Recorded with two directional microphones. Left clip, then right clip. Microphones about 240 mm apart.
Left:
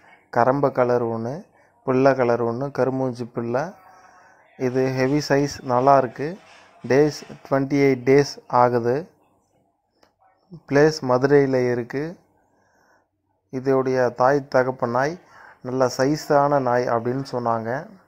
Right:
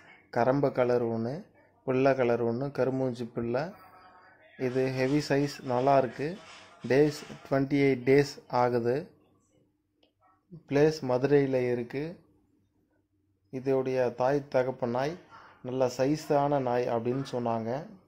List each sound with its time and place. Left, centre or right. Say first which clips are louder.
0.3 s a man's voice: left 8 dB; centre
10.7 s a man's voice: left 8 dB; centre
11.1 s speech: left 8 dB; centre
11.5 s speech: left 7 dB; centre
13.5 s a man's voice: left 8 dB; centre
15.9 s speech: left 7 dB; centre
16.3 s a man's voice: left 10 dB; centre